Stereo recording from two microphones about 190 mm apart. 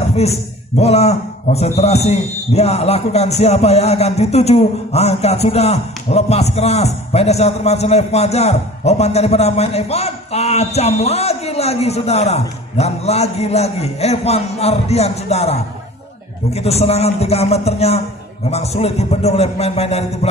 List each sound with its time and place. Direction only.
0.1 s a man's voice: 35° left (ahead or behind)
16.6 s a man's voice: 35° left (ahead or behind)